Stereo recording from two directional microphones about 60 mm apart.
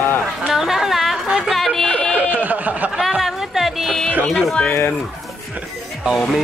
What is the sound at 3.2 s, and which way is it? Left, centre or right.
Speech, centre.